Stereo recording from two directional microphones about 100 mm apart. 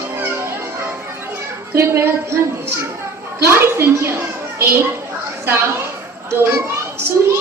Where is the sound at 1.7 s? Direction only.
25° right (ahead or behind).